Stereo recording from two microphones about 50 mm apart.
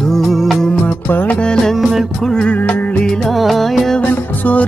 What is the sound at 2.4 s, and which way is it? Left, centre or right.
Music, left.